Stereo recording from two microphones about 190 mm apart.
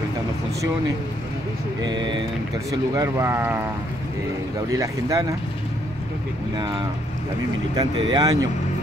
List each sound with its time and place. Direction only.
1.8 s speech: 25° right (ahead or behind)
4.6 s speech: 15° right (ahead or behind)
6.5 s speech: 20° right (ahead or behind)